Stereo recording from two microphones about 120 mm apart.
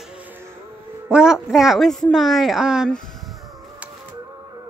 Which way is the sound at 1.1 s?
10° right (ahead or behind).